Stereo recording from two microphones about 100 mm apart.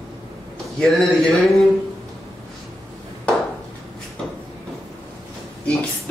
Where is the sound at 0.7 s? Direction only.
5° left (ahead or behind).